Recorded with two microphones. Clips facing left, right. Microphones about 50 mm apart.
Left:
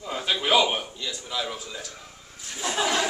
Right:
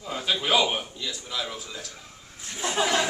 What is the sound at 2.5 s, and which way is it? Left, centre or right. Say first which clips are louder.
Speech: right 1 dB; centre.